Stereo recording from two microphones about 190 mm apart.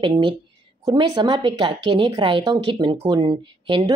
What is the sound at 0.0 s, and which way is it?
Speech, 25° right (ahead or behind).